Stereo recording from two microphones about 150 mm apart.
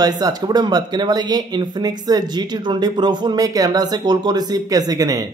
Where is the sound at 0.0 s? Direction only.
25° right (ahead or behind).